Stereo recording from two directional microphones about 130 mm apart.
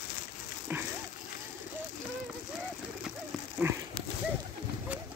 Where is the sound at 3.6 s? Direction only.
15° right (ahead or behind).